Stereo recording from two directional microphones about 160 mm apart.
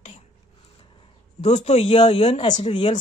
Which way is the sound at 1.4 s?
45° left (ahead or behind).